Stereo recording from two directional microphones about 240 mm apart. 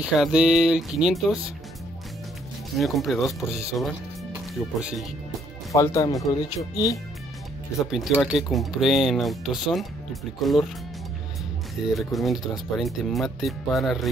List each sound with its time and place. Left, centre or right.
0.0 s speech: centre
2.8 s speech: centre
5.7 s speech: centre
7.8 s speech: centre
11.8 s speech: centre